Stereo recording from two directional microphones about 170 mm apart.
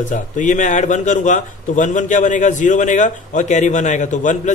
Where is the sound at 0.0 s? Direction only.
50° left (ahead or behind).